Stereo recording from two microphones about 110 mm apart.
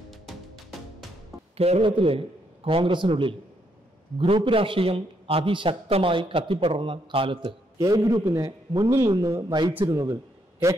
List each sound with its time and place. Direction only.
0.1 s music: centre (ahead or behind)
1.6 s a man's voice: 60° right (ahead or behind)
4.5 s a man's voice: 55° right (ahead or behind)
7.7 s a man's voice: 30° right (ahead or behind)